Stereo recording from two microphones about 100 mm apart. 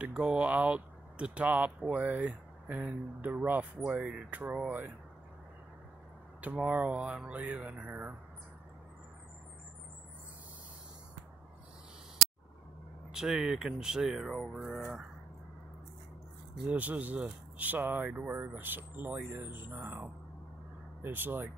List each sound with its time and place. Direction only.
0.1 s speech: 10° right (ahead or behind)
6.4 s speech: 15° right (ahead or behind)
13.1 s speech: 5° right (ahead or behind)
16.6 s speech: 15° right (ahead or behind)